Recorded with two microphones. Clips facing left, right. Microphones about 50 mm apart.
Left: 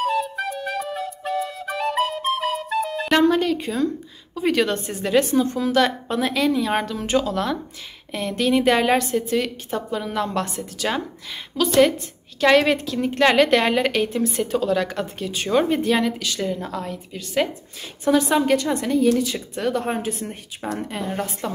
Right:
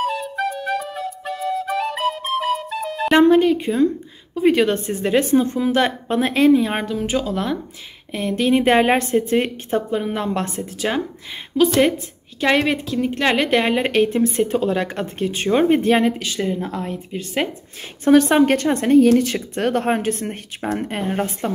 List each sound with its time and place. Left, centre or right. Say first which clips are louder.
0.0 s flute: even; centre
3.2 s music: right 5 dB; right
4.4 s a woman's voice: right 4 dB; centre
4.7 s a woman's voice: right 1 dB; right
12.4 s a woman's voice: left 2 dB; centre
13.9 s speech: right 5 dB; right
18.0 s speech: right 5 dB; right